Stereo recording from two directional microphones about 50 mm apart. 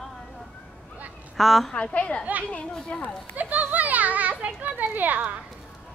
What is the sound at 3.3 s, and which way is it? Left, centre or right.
A child's voice, right.